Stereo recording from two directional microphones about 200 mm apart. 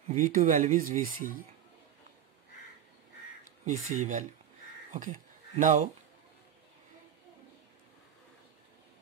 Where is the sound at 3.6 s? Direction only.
35° right (ahead or behind).